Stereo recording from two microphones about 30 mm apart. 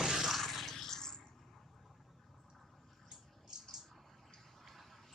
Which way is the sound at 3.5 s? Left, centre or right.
Right.